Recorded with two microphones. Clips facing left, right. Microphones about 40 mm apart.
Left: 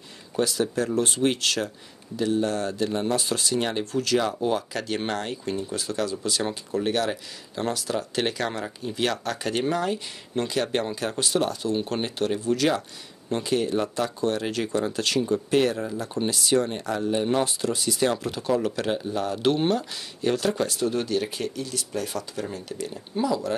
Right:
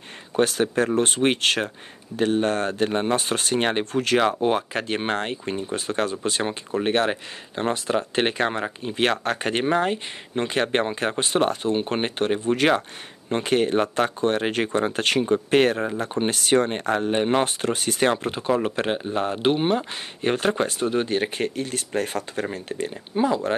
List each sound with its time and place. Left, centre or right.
0.4 s speech: right
19.5 s speech: right
19.8 s speech: right